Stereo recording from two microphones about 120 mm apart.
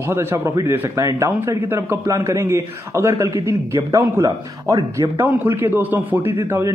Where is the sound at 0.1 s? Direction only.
20° right (ahead or behind).